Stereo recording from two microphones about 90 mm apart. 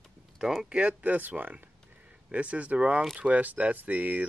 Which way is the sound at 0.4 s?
5° right (ahead or behind).